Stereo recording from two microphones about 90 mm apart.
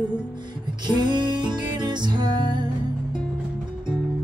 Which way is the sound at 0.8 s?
55° right (ahead or behind).